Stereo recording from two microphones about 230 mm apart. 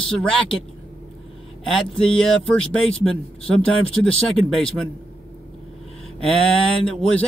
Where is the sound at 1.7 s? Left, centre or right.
Centre.